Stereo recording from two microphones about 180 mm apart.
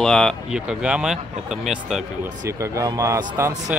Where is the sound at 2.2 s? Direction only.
15° right (ahead or behind).